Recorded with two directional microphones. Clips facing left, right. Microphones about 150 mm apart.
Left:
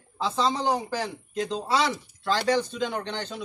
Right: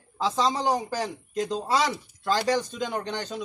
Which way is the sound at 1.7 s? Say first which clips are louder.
Left 1 dB; 45° right (ahead or behind).